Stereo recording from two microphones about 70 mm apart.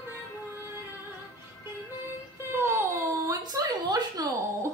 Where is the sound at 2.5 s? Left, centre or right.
Right.